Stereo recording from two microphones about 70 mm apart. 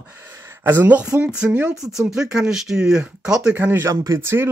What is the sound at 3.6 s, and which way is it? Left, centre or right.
Speech, right.